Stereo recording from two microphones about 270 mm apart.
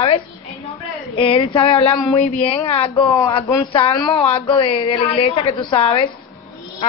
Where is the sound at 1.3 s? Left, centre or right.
Left.